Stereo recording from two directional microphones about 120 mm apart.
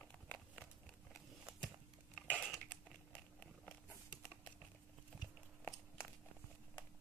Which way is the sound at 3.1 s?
10° left (ahead or behind).